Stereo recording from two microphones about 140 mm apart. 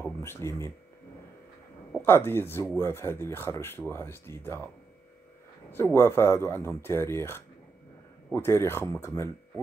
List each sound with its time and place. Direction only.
0.0 s speech: 20° left (ahead or behind)
2.0 s speech: 15° left (ahead or behind)
5.7 s speech: 15° left (ahead or behind)